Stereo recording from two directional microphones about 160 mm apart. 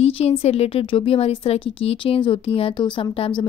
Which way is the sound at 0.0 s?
40° left (ahead or behind).